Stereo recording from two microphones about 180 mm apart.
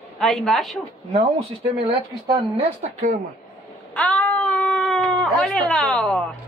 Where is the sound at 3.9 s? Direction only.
5° left (ahead or behind).